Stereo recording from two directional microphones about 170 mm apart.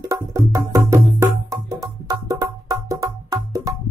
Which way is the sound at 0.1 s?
20° right (ahead or behind).